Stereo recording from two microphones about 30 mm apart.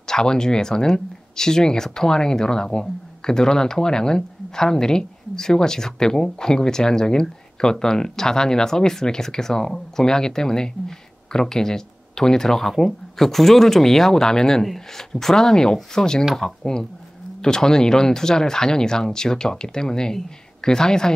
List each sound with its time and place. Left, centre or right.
0.0 s speech: left